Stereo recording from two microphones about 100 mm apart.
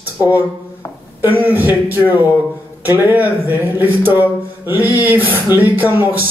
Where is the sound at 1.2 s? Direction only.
20° right (ahead or behind).